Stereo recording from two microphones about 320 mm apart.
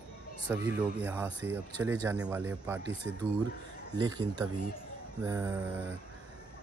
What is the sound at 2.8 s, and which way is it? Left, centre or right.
Speech, right.